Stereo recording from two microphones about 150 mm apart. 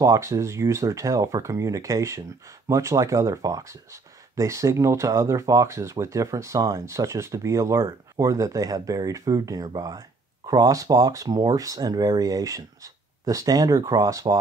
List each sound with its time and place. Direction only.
0.0 s speech: 20° right (ahead or behind)